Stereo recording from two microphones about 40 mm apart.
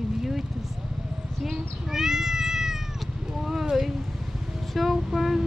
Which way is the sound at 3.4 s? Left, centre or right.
Centre.